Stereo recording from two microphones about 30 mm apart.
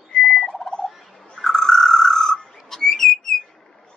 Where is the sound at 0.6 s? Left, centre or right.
Centre.